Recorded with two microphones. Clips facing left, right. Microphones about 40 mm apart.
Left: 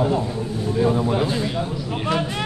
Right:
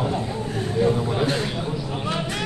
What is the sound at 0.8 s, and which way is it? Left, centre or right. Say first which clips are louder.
Speech: left 2 dB; centre.